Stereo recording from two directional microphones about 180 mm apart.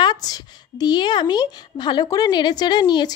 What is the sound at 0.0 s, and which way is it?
A woman's voice, 20° left (ahead or behind).